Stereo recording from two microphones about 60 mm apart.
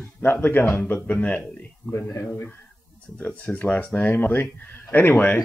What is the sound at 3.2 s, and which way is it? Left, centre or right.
Speech, left.